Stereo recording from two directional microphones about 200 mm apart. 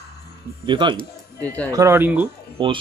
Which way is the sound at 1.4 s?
5° left (ahead or behind).